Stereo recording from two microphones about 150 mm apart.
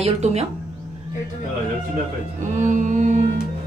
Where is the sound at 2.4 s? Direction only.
55° right (ahead or behind).